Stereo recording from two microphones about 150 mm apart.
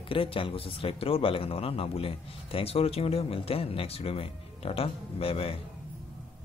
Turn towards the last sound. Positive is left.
turn(degrees=40)  # may be behind; listen again after turning